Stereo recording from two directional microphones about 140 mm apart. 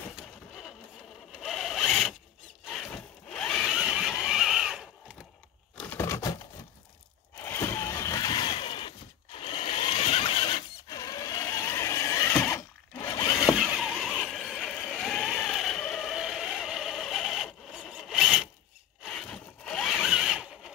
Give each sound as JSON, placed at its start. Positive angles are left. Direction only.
{"t": 0.1, "sound": "vehicle", "side_deg": 0}
{"t": 1.3, "sound": "zipper", "side_deg": 0}
{"t": 2.7, "sound": "a sound", "side_deg": 5}
{"t": 5.8, "sound": "a sound", "side_deg": 15}
{"t": 7.4, "sound": "vehicle", "side_deg": 20}
{"t": 13.6, "sound": "neigh", "side_deg": 0}
{"t": 19.0, "sound": "zipper", "side_deg": 5}